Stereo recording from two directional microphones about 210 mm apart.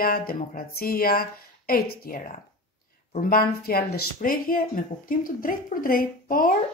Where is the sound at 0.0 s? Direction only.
45° left (ahead or behind).